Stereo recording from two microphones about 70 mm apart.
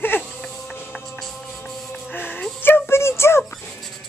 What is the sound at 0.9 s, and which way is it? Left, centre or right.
Music, centre.